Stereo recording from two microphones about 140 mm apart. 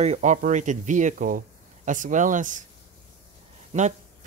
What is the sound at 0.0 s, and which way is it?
Speech, 55° right (ahead or behind).